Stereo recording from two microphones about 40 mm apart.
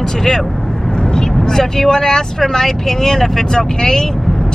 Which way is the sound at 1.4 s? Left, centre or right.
Centre.